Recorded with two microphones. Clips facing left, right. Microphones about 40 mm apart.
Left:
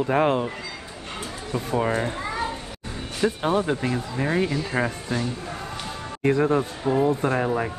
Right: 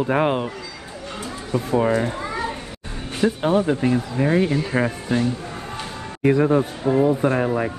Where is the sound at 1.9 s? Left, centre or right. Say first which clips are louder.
Right 4 dB; left.